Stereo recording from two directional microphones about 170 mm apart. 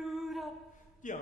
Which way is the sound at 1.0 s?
50° left (ahead or behind).